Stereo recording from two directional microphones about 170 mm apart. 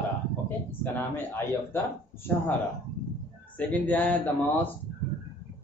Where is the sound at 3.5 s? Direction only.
10° left (ahead or behind).